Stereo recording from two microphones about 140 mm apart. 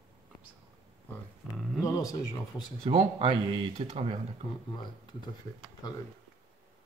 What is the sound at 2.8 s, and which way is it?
Speech, 40° right (ahead or behind).